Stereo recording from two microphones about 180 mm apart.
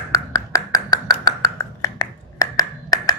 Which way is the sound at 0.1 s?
15° left (ahead or behind).